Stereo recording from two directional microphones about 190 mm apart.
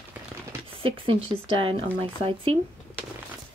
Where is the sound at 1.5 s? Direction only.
30° right (ahead or behind).